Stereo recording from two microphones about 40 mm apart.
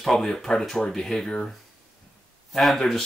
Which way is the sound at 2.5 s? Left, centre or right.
Centre.